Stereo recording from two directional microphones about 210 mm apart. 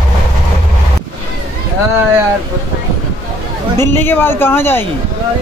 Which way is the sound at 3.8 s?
10° left (ahead or behind).